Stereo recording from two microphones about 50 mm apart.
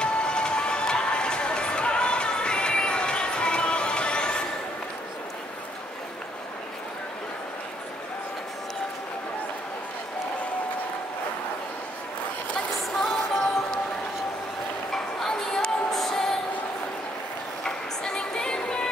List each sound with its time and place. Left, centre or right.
0.0 s music: centre
13.0 s music: centre
14.9 s a sound: centre
17.6 s music: centre